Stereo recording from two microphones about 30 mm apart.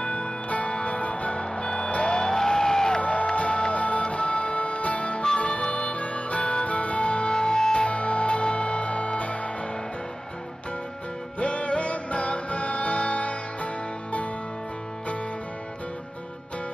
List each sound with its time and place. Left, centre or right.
0.0 s music: left
2.1 s music: left
3.1 s music: left
7.8 s music: left
11.3 s music: left